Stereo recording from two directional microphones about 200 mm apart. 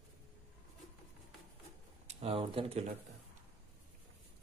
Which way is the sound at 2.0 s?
30° right (ahead or behind).